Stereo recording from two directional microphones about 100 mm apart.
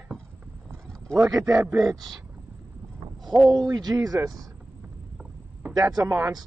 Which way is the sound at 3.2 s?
Centre (ahead or behind).